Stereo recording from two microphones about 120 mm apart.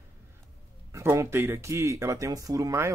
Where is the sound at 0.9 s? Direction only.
25° right (ahead or behind).